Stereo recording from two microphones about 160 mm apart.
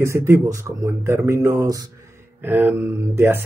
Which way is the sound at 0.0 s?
15° right (ahead or behind).